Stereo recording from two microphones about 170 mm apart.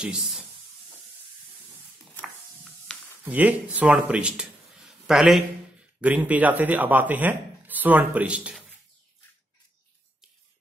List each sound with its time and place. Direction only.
0.0 s speech: 5° right (ahead or behind)
3.3 s a man's voice: 10° right (ahead or behind)